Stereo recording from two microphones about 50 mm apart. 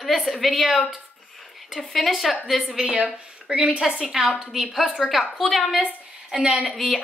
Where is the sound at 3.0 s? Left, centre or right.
Right.